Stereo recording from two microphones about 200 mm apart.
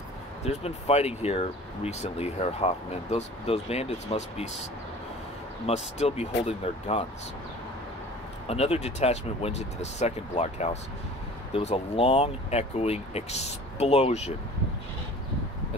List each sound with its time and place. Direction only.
0.4 s speech: 30° left (ahead or behind)
5.7 s speech: 30° left (ahead or behind)
8.5 s speech: 30° left (ahead or behind)